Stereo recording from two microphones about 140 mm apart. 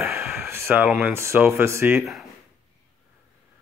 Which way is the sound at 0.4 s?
15° right (ahead or behind).